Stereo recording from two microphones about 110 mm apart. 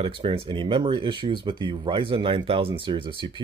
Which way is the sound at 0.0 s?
60° right (ahead or behind).